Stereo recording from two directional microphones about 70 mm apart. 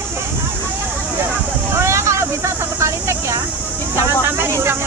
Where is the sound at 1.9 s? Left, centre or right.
Right.